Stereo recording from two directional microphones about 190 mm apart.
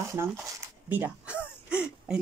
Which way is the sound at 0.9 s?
10° right (ahead or behind).